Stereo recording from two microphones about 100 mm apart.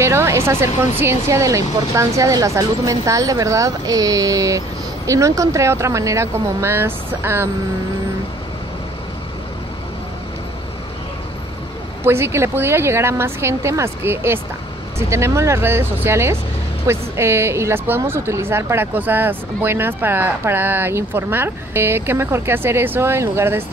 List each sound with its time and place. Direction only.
0.0 s speech: 25° right (ahead or behind)
12.0 s speech: 25° right (ahead or behind)